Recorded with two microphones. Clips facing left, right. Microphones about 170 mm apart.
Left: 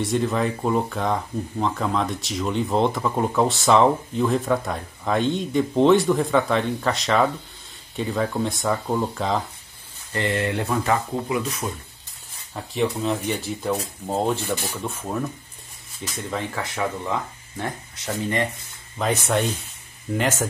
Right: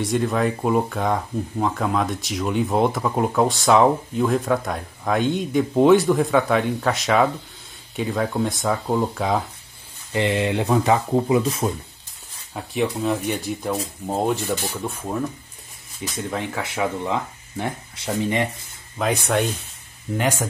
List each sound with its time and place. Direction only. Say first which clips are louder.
0.0 s speech: right 1 dB; centre (ahead or behind)
10.1 s speech: right 3 dB; 15° right (ahead or behind)
12.7 s speech: right 1 dB; 10° right (ahead or behind)
16.3 s speech: even; 10° right (ahead or behind)
18.9 s speech: right 1 dB; centre (ahead or behind)